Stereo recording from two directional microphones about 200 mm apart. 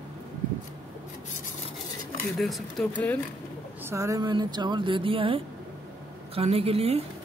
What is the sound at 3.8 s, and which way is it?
Speech, 15° right (ahead or behind).